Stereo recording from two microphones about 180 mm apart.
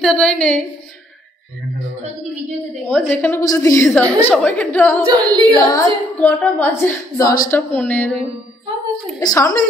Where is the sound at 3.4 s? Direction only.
20° left (ahead or behind).